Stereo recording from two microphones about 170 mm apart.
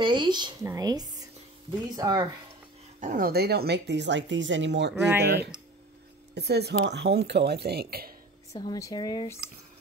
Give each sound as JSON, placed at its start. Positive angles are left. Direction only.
{"t": 0.0, "sound": "speech", "side_deg": -25}
{"t": 3.0, "sound": "speech", "side_deg": -50}
{"t": 5.2, "sound": "speech", "side_deg": -80}
{"t": 8.5, "sound": "speech", "side_deg": 20}